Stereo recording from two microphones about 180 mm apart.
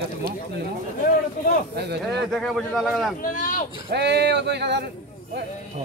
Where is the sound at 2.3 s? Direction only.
Centre (ahead or behind).